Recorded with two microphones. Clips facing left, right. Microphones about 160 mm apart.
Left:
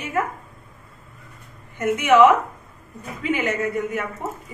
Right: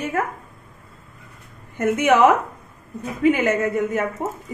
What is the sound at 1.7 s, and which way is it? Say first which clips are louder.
Speech: left 1 dB; 50° right (ahead or behind).